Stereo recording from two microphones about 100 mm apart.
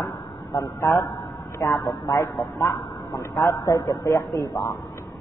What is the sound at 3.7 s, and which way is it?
Speech, 45° left (ahead or behind).